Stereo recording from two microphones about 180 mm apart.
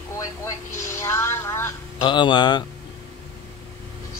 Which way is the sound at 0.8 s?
15° left (ahead or behind).